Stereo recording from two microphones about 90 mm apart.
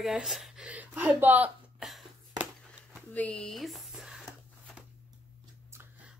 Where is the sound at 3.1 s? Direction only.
15° left (ahead or behind); by 4.8 s 5° right (ahead or behind).